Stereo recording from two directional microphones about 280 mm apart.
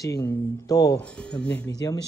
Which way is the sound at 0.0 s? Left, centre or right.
Centre.